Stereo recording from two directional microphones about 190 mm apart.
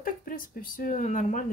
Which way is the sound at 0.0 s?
45° left (ahead or behind).